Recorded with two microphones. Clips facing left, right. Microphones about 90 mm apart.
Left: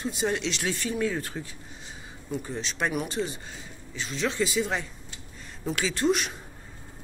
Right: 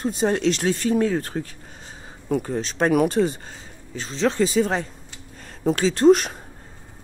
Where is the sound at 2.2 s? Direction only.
65° right (ahead or behind).